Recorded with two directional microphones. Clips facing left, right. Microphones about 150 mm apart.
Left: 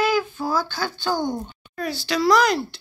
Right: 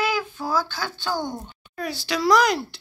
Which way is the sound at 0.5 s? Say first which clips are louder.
Right 2 dB; 5° right (ahead or behind).